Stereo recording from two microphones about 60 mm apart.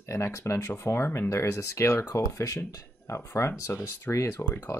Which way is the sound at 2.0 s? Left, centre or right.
Left.